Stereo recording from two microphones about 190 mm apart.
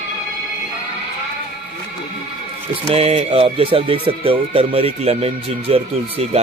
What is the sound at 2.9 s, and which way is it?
Speech, 30° right (ahead or behind).